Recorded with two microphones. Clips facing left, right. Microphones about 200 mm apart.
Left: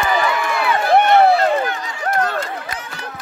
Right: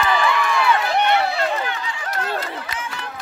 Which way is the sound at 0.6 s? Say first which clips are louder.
Left 7 dB; 50° left (ahead or behind).